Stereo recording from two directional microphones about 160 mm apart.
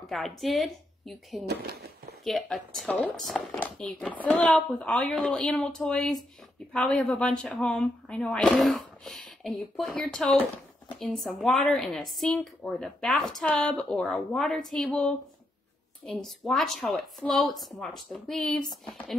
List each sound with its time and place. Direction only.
0.0 s a sound: centre (ahead or behind)
0.4 s speech: centre (ahead or behind)
1.5 s speech: 85° right
2.2 s speech: centre (ahead or behind)